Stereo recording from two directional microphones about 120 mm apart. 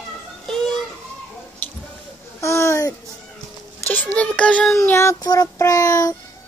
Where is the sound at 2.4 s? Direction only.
25° left (ahead or behind).